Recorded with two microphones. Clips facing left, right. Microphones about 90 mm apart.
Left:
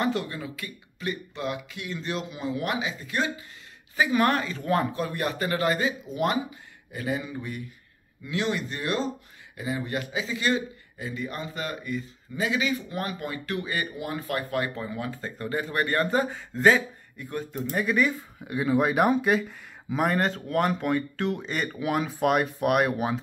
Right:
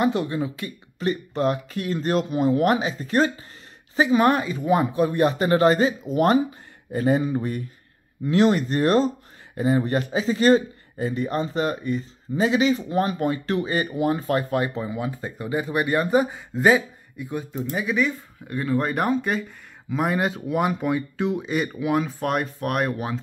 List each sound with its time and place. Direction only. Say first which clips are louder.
0.0 s speech: right 5 dB; 20° right (ahead or behind); by 3.4 s 40° right (ahead or behind)
3.9 s a man's voice: right 5 dB; 25° right (ahead or behind); by 23.1 s 5° left (ahead or behind)